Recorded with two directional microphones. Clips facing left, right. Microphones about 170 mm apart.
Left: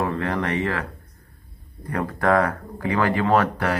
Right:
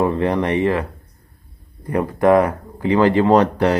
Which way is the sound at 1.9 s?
20° right (ahead or behind).